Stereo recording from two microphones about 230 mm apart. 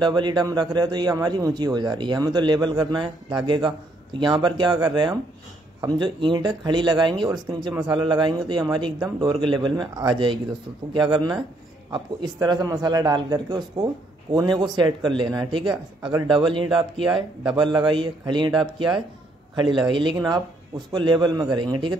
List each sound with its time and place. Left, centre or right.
0.0 s a man's voice: centre